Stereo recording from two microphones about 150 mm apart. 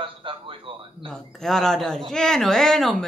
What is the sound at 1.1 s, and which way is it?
Speech, 5° left (ahead or behind).